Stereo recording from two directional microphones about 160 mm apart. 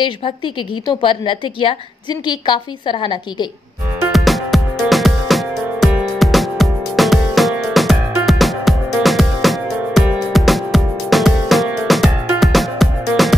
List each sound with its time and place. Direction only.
0.8 s a woman's voice: 30° left (ahead or behind)
4.1 s music: centre (ahead or behind)